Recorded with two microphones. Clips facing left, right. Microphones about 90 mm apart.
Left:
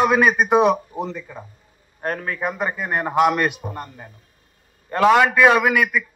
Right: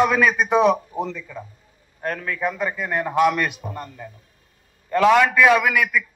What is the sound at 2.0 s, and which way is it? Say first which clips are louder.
A man's voice: even; 35° left (ahead or behind).